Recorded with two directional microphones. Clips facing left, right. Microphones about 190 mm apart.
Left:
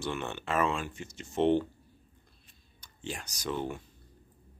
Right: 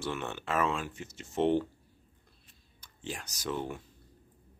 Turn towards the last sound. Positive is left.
turn(degrees=0)  # may be behind; listen again after turning